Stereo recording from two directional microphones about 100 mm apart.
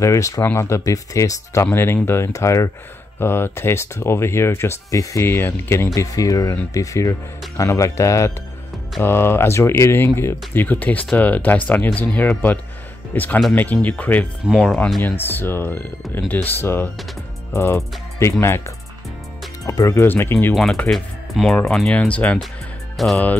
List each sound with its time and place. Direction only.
0.0 s speech: 30° left (ahead or behind)
5.9 s speech: 35° left (ahead or behind); by 14.2 s 15° left (ahead or behind)
14.6 s speech: 5° left (ahead or behind)
15.0 s speech: 20° left (ahead or behind)
19.6 s speech: 35° left (ahead or behind)
20.5 s speech: 5° left (ahead or behind)
23.0 s speech: centre (ahead or behind)